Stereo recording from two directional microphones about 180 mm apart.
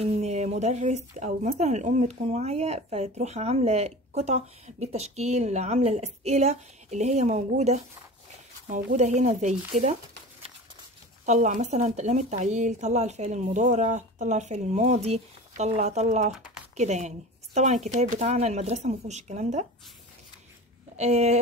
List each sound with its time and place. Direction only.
0.0 s speech: 40° right (ahead or behind)
11.2 s speech: 40° right (ahead or behind)
20.9 s speech: 35° right (ahead or behind)